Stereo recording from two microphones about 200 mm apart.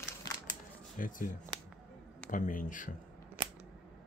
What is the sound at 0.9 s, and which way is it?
Speech, 40° left (ahead or behind).